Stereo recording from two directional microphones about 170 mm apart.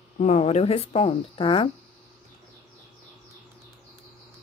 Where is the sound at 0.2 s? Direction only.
40° left (ahead or behind).